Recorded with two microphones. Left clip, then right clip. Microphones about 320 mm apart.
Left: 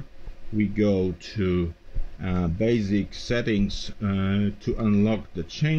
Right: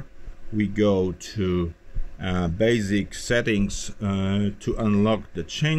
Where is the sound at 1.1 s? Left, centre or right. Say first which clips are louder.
Even; centre.